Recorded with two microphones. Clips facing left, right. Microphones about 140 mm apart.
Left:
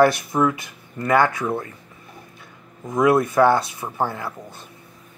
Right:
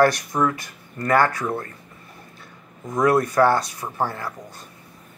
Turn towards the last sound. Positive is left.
turn(degrees=10)  # may be behind; listen again after turning